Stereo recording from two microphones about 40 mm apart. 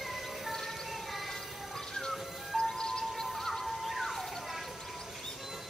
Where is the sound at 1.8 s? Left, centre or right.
Centre.